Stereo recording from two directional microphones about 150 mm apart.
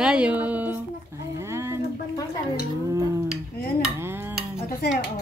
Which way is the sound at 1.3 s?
20° right (ahead or behind).